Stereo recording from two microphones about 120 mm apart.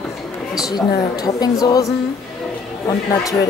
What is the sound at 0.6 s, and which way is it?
A woman's voice, 30° left (ahead or behind).